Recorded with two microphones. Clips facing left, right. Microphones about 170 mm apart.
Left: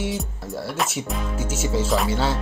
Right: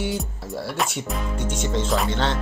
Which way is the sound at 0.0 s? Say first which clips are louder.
Even; centre (ahead or behind).